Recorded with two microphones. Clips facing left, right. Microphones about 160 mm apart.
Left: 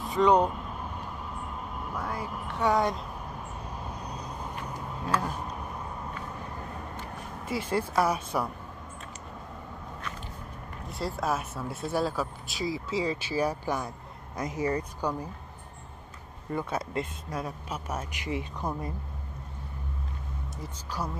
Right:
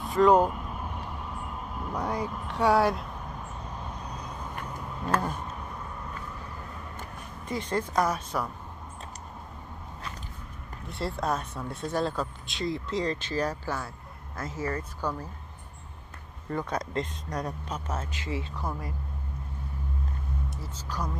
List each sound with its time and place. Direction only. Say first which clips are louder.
0.0 s speech: right 2 dB; centre (ahead or behind)
2.0 s speech: right 4 dB; 20° right (ahead or behind)
2.2 s speech: right 1 dB; 10° left (ahead or behind)
2.6 s speech: right 3 dB; 5° right (ahead or behind)
7.4 s speech: left 1 dB; 5° left (ahead or behind)
10.9 s speech: even; centre (ahead or behind)
16.4 s speech: even; 10° left (ahead or behind)
21.0 s speech: even; 10° left (ahead or behind)